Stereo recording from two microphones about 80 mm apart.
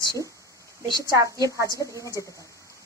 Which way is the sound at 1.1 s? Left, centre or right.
Right.